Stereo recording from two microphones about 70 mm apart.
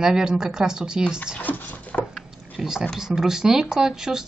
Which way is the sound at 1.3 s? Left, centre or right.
Left.